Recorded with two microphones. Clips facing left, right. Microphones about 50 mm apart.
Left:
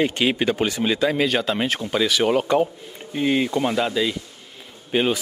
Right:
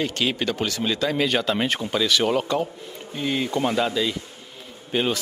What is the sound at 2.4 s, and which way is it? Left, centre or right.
Speech, left.